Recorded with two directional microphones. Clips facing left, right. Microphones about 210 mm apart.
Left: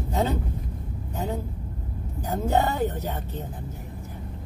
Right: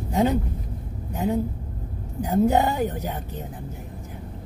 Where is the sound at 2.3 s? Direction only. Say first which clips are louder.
Right 4 dB; 15° right (ahead or behind).